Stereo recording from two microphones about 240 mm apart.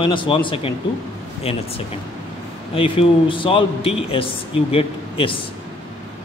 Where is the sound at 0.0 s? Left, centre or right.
Left.